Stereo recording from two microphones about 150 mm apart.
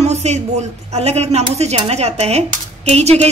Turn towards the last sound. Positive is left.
turn(degrees=-45)  # may be behind; listen again after turning